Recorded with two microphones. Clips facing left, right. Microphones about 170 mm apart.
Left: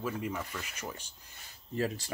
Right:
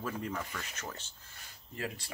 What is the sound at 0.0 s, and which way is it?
Speech, 10° left (ahead or behind).